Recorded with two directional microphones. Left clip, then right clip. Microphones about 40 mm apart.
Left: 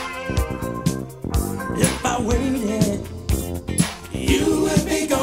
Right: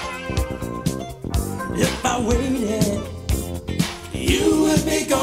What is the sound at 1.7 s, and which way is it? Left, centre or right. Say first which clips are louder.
Music: right 1 dB; right.